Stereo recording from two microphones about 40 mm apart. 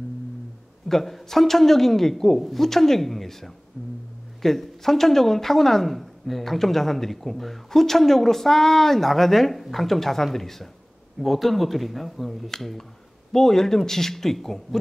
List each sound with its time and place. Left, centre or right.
0.8 s a woman's voice: centre